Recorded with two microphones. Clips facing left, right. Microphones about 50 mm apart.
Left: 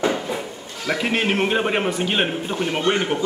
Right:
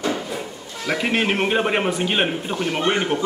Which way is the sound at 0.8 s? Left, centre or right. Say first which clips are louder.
Even; centre.